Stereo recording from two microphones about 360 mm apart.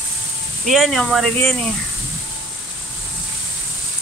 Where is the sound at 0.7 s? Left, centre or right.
Centre.